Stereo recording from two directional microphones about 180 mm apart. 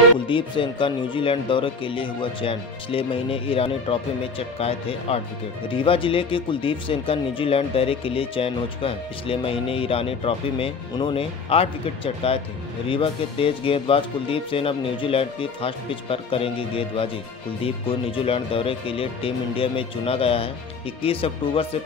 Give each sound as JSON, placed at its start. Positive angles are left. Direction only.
{"t": 0.3, "sound": "speech", "side_deg": 30}